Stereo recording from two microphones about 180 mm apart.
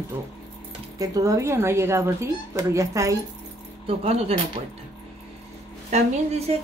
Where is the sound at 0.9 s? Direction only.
20° right (ahead or behind).